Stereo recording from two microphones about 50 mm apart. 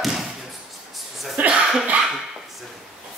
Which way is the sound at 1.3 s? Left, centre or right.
Right.